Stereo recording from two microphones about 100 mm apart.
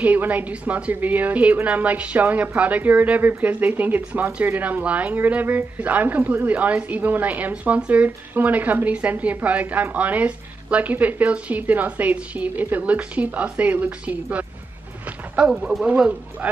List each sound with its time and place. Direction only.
0.0 s speech: 15° right (ahead or behind)